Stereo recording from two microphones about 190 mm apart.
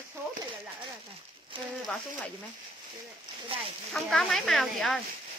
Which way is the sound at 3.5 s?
30° right (ahead or behind).